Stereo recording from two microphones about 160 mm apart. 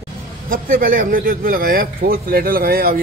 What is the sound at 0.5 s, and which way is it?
Speech, 60° right (ahead or behind).